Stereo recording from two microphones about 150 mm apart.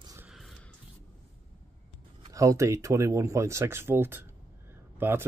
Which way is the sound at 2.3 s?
20° right (ahead or behind).